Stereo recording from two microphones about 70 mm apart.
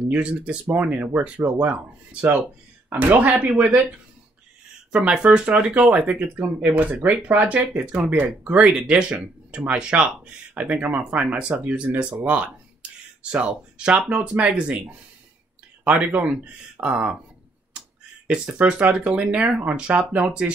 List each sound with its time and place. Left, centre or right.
0.1 s speech: centre
1.4 s speech: right
2.9 s speech: right
4.9 s speech: centre
16.1 s speech: right
18.2 s speech: centre